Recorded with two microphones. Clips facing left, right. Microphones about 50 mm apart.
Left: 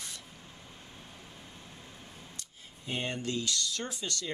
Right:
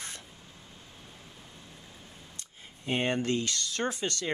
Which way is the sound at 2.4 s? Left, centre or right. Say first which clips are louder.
Right 1 dB; right.